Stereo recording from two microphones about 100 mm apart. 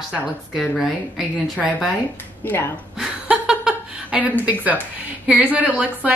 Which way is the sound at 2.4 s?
20° left (ahead or behind).